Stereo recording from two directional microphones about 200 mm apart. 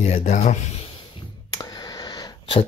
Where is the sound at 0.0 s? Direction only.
35° left (ahead or behind).